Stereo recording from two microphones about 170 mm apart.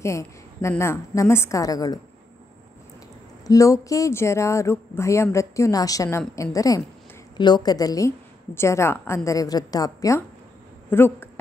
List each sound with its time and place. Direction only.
0.0 s speech: 15° left (ahead or behind)
3.4 s a woman's voice: 20° left (ahead or behind)